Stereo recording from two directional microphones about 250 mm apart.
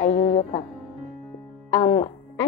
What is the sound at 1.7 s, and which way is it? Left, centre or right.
Music, centre.